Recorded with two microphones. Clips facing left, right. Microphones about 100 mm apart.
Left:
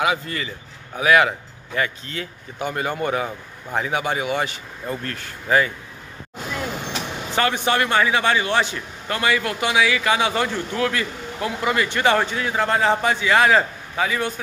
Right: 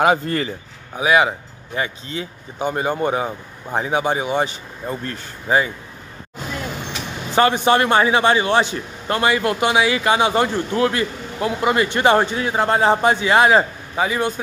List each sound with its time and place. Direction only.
0.0 s speech: 45° right (ahead or behind)
0.9 s a man's voice: 20° right (ahead or behind)
7.3 s a man's voice: 30° right (ahead or behind)